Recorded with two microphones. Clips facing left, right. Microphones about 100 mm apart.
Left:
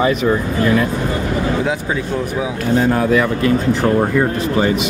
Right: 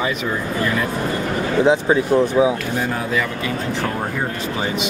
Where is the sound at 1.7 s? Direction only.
25° right (ahead or behind).